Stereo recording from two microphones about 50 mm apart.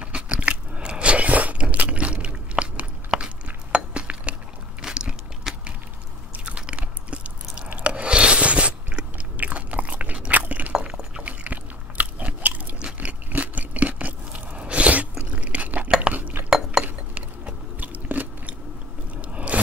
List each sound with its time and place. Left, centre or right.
0.0 s biting: right
3.1 s a sound: centre
4.8 s biting: centre
6.3 s chewing: right
11.2 s biting: right
12.7 s biting: centre
13.3 s a sound: right
16.1 s cutlery: right
16.4 s chink: centre
16.8 s a sound: right
19.2 s scrape: right